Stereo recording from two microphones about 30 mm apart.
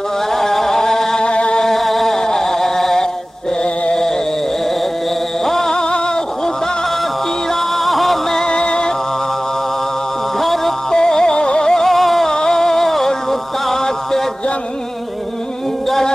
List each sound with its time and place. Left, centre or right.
0.3 s music: centre
1.2 s music: left
1.6 s music: centre
5.4 s music: centre
7.7 s music: centre
8.5 s music: left
10.4 s music: centre
10.9 s music: left
11.3 s music: left
11.7 s music: centre
12.3 s music: centre